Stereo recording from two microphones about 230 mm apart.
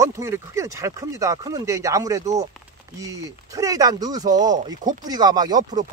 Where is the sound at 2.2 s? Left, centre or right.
Right.